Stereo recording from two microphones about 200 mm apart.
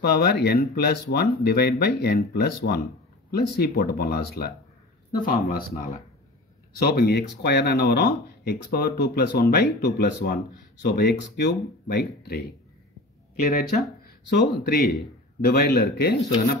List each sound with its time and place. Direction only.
0.0 s speech: 50° left (ahead or behind)